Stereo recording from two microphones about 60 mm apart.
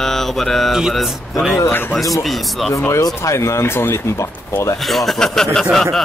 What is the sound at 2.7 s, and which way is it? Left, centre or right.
Speech, left.